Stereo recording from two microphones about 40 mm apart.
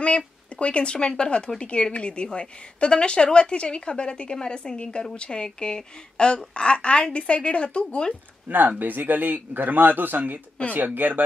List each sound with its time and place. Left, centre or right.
0.0 s a woman's voice: left
8.5 s speech: right